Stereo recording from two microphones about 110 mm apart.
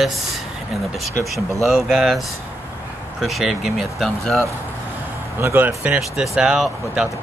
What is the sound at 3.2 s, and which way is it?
Speech, 5° right (ahead or behind).